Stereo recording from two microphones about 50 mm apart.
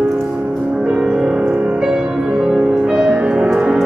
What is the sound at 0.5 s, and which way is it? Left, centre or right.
Music, centre.